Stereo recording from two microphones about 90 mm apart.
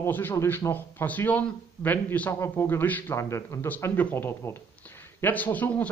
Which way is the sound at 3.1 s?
35° left (ahead or behind).